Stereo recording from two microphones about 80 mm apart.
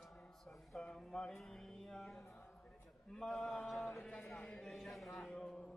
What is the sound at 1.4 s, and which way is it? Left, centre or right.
Music, centre.